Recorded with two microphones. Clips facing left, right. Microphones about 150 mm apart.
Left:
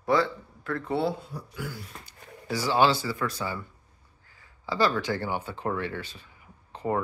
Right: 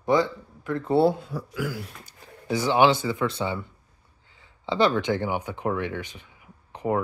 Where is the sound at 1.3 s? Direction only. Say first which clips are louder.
Right 7 dB; 90° right.